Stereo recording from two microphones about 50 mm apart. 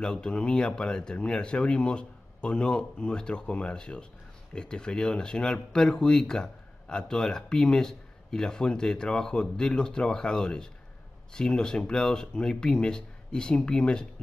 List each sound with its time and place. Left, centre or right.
0.0 s speech: centre